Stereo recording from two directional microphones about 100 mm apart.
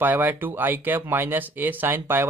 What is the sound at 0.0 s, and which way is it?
Speech, 20° right (ahead or behind).